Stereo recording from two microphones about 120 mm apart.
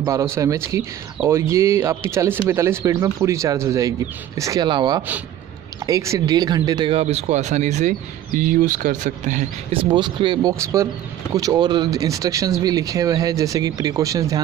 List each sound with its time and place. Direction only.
0.0 s speech: 25° right (ahead or behind)
6.9 s speech: 60° right (ahead or behind); by 7.9 s 75° right (ahead or behind)
8.5 s speech: 90° right
9.7 s speech: 45° right (ahead or behind)
10.5 s speech: 25° right (ahead or behind)